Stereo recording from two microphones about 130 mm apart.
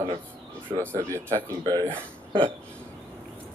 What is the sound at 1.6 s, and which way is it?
Speech, 35° right (ahead or behind).